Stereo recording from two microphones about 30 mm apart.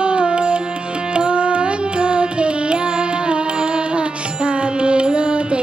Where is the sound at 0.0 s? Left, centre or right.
Right.